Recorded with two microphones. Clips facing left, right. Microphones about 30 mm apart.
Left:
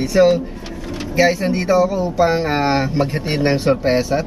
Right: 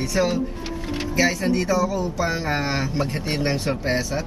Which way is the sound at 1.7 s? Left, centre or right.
Left.